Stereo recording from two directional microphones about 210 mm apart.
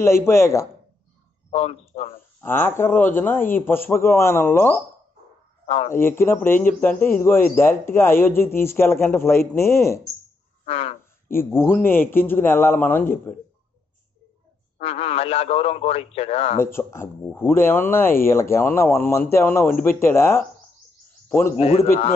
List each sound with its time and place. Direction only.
0.0 s speech: 10° left (ahead or behind)
1.5 s a man's voice: 30° left (ahead or behind)
2.4 s speech: 10° left (ahead or behind)
5.9 s speech: 10° left (ahead or behind)
10.6 s frog: 30° left (ahead or behind)
11.2 s speech: 10° left (ahead or behind)
14.8 s speech: 30° left (ahead or behind)
16.5 s a man's voice: 10° left (ahead or behind)
21.5 s speech: 30° left (ahead or behind)